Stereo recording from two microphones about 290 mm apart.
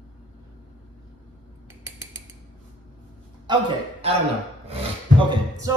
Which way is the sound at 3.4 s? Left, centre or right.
Centre.